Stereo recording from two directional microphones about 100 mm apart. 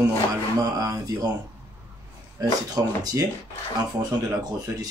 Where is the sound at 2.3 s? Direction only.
40° right (ahead or behind).